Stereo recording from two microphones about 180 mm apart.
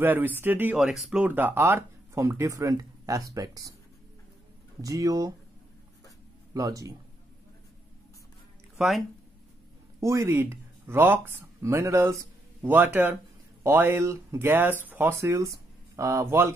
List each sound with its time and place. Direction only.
0.0 s speech: 10° right (ahead or behind)
4.8 s speech: 20° right (ahead or behind)
6.5 s speech: 20° right (ahead or behind)
8.7 s speech: centre (ahead or behind)
9.9 s speech: 15° right (ahead or behind)